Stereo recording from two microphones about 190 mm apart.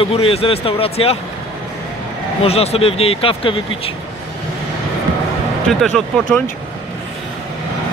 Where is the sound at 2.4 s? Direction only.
30° left (ahead or behind).